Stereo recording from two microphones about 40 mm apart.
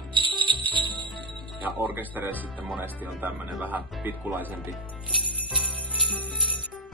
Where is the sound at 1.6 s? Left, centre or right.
Right.